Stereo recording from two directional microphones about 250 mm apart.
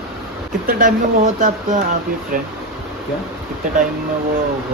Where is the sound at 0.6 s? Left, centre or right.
Right.